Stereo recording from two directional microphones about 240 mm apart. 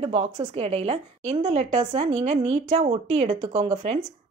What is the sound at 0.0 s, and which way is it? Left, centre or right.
A woman's voice, right.